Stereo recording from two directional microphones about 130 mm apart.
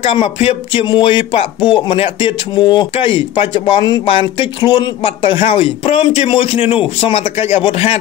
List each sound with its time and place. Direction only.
0.0 s speech: 45° left (ahead or behind)